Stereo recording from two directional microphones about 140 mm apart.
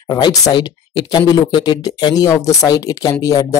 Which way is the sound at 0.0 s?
30° left (ahead or behind).